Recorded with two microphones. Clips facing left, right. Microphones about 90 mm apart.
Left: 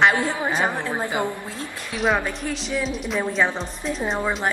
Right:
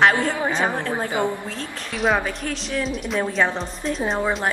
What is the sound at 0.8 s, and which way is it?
Speech, 15° left (ahead or behind).